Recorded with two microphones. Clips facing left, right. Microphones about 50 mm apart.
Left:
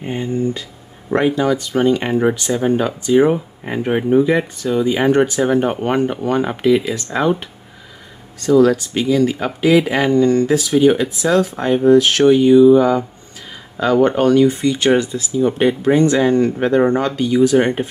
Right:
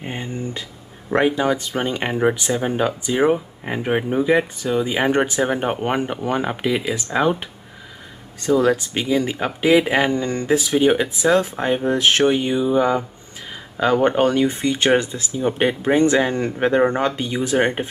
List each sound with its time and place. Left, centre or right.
0.0 s speech: centre
8.5 s speech: right
14.0 s speech: right